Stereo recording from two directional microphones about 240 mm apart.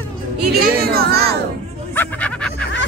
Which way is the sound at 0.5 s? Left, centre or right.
Right.